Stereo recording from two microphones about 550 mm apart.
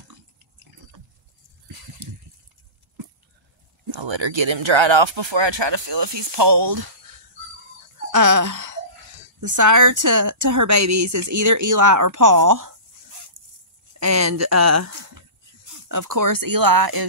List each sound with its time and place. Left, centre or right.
2.0 s a sound: right
3.8 s speech: right
8.1 s a woman's voice: right
13.9 s speech: right